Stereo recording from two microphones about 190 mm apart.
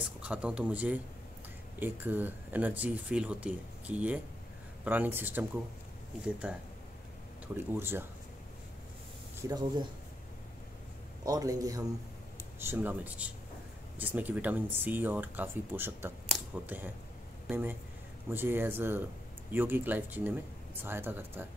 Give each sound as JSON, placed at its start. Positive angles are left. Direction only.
{"t": 0.2, "sound": "speech", "side_deg": -5}
{"t": 9.4, "sound": "speech", "side_deg": -20}
{"t": 11.2, "sound": "speech", "side_deg": -20}